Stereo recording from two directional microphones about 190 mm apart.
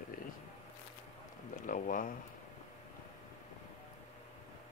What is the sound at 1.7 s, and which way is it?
Speech, 45° left (ahead or behind).